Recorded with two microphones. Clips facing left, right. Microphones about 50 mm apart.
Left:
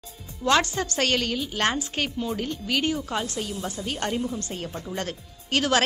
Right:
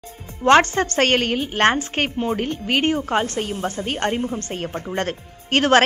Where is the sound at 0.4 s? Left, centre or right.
Right.